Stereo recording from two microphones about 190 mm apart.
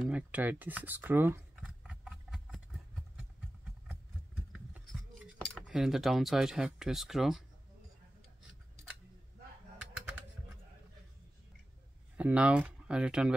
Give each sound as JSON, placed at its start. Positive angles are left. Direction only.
{"t": 0.0, "sound": "a sound", "side_deg": -5}
{"t": 4.5, "sound": "scissors", "side_deg": -5}
{"t": 12.2, "sound": "speech", "side_deg": -5}